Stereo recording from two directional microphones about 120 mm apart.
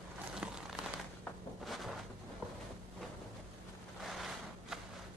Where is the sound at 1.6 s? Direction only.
Centre (ahead or behind).